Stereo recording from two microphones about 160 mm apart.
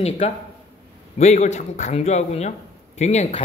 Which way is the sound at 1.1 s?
45° left (ahead or behind).